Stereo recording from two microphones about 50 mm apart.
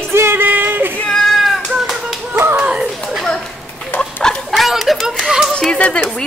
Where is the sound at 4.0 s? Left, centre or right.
Centre.